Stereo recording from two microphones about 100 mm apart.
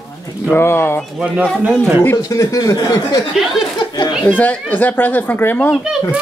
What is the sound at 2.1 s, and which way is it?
Speech, 35° left (ahead or behind).